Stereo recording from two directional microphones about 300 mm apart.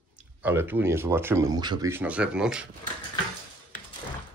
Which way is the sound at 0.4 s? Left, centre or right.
Centre.